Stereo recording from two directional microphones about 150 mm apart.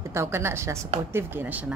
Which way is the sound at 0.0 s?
20° right (ahead or behind).